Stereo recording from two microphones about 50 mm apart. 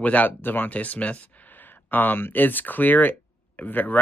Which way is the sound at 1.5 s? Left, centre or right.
Left.